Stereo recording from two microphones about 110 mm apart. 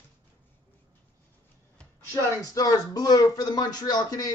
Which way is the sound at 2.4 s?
35° left (ahead or behind).